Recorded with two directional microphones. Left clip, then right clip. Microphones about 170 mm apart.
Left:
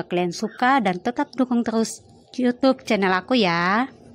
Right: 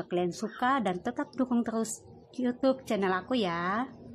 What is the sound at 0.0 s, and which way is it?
A woman's voice, 25° left (ahead or behind).